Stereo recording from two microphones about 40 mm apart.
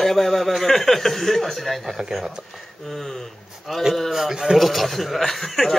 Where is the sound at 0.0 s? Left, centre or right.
Centre.